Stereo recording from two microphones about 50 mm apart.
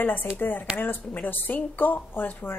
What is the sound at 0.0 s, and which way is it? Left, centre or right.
Speech, left.